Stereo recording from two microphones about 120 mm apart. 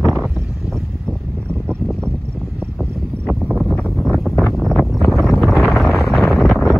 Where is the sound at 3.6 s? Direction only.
5° left (ahead or behind).